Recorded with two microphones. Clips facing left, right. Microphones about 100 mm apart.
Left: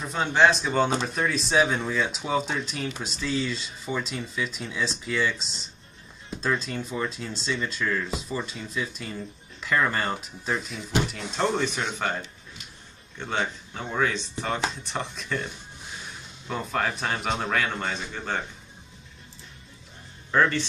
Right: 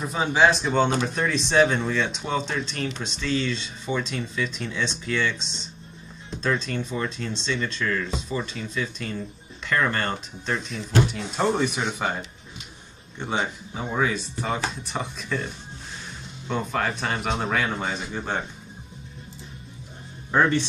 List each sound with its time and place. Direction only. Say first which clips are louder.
0.0 s speech: right 1 dB; 5° right (ahead or behind)
11.4 s speech: right 2 dB; 10° right (ahead or behind)
20.2 s speech: right 2 dB; 15° right (ahead or behind)